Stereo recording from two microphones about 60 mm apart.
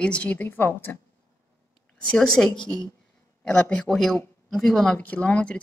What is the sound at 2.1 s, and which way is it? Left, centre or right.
A woman's voice, centre.